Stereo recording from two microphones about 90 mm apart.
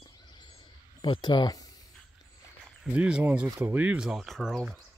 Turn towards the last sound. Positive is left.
turn(degrees=0)  # may be behind; listen again after turning